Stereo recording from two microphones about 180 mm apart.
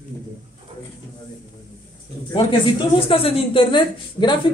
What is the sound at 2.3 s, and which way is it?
A woman's voice, 25° left (ahead or behind).